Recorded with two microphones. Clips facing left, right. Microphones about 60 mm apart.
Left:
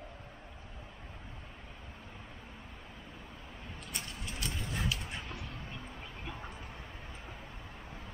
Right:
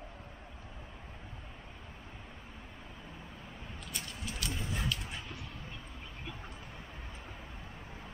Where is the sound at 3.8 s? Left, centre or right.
Left.